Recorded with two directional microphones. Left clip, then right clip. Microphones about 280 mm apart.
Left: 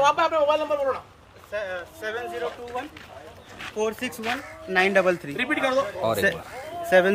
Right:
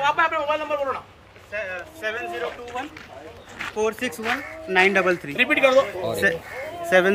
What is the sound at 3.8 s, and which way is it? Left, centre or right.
Speech, centre.